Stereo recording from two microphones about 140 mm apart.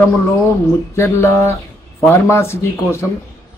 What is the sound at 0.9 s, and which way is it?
A man's voice, 20° left (ahead or behind).